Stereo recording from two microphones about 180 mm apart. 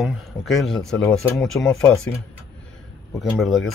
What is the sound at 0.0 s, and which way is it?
A man's voice, centre (ahead or behind).